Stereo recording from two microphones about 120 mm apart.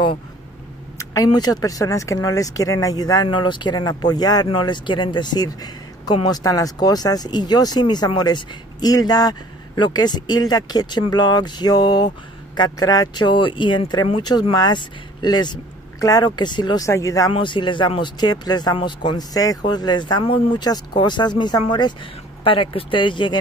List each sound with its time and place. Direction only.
0.9 s speech: 30° left (ahead or behind)
16.8 s speech: 25° left (ahead or behind)
17.3 s speech: 40° left (ahead or behind)